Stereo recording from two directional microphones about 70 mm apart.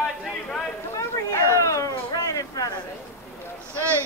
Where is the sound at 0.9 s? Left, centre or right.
Left.